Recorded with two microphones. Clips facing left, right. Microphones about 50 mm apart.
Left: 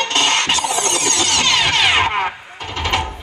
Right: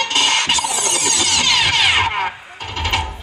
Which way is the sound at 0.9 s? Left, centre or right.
Left.